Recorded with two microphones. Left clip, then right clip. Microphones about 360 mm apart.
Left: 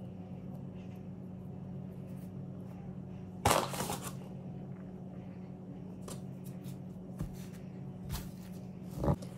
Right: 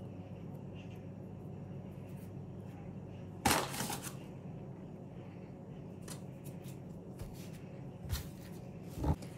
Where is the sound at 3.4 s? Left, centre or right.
Left.